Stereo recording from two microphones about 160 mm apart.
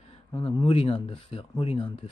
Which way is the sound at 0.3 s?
25° left (ahead or behind).